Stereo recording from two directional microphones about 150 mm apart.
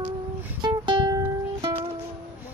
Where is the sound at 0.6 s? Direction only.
35° right (ahead or behind).